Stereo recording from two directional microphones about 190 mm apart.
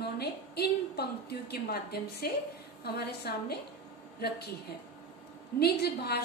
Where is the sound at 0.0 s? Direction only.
60° left (ahead or behind).